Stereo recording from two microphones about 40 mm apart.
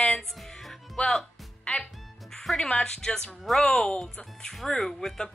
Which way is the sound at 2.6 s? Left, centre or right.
Centre.